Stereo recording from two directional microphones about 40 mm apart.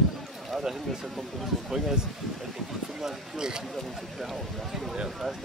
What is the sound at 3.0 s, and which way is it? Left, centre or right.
Speech, centre.